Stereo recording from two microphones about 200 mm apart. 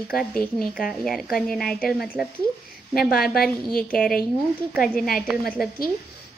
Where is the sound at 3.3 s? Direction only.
50° left (ahead or behind).